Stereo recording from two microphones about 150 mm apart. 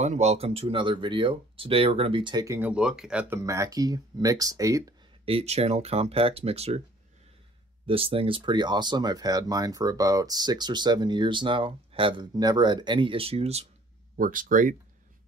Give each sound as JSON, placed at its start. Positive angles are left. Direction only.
{"t": 0.0, "sound": "speech", "side_deg": -50}
{"t": 2.6, "sound": "speech", "side_deg": -5}
{"t": 3.3, "sound": "speech", "side_deg": -20}
{"t": 5.2, "sound": "speech", "side_deg": -45}
{"t": 7.8, "sound": "speech", "side_deg": -40}
{"t": 14.1, "sound": "speech", "side_deg": -65}